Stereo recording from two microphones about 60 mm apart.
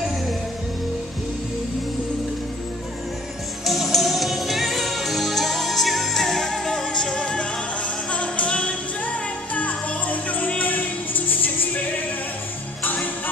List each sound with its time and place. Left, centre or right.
3.6 s music: centre; by 11.8 s left
12.8 s music: left